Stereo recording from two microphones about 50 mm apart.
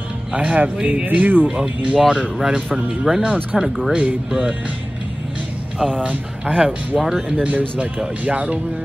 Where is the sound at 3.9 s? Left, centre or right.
Right.